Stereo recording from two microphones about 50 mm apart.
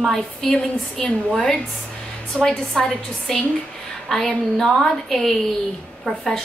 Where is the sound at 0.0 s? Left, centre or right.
Centre.